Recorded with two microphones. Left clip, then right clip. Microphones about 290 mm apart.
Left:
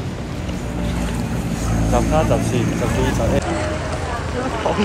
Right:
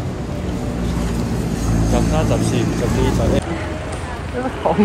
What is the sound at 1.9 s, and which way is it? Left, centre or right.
Speech, centre.